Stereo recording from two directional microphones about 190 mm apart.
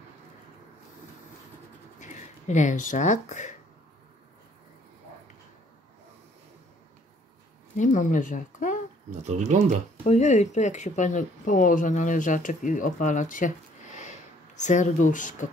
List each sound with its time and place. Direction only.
2.0 s speech: 40° left (ahead or behind)
7.7 s speech: 40° left (ahead or behind)
9.2 s speech: 35° right (ahead or behind)
10.0 s speech: 35° left (ahead or behind)
14.5 s speech: 40° left (ahead or behind)